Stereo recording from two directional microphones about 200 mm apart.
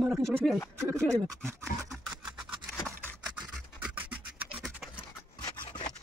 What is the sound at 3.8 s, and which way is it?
Scratch, 5° right (ahead or behind).